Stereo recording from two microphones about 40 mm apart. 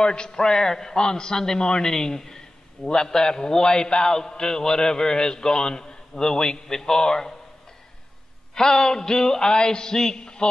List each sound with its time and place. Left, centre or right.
0.0 s a man's voice: left
8.5 s a man's voice: centre